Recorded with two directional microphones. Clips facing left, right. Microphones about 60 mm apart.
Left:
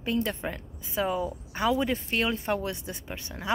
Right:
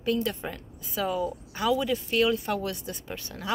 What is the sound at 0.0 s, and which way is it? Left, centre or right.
Speech, left.